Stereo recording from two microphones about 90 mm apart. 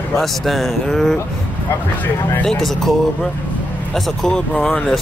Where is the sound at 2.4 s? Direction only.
5° left (ahead or behind).